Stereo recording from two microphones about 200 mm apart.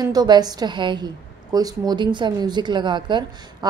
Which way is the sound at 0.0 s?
20° right (ahead or behind).